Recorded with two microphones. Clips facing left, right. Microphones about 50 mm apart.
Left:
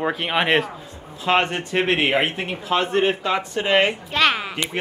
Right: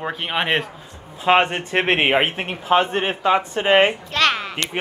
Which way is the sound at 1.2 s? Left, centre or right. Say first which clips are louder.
Right 3 dB; centre.